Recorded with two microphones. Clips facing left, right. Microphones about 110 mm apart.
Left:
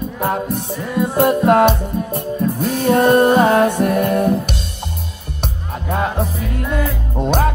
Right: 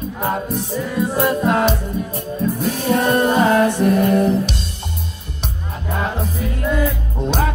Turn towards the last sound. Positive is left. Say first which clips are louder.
# left 3 dB
turn(degrees=60)  # may be behind; listen again after turning